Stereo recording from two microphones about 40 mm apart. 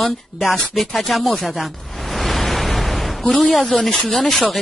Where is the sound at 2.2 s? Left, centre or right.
Centre.